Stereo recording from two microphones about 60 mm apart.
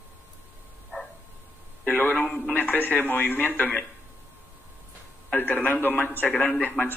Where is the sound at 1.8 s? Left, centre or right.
Left.